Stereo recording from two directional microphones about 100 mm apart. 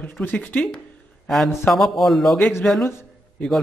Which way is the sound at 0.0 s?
20° left (ahead or behind).